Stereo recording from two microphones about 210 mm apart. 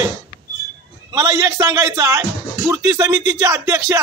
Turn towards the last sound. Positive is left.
turn(degrees=-15)  # may be behind; listen again after turning